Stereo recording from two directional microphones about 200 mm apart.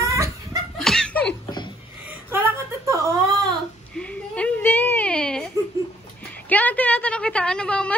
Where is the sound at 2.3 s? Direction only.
10° right (ahead or behind).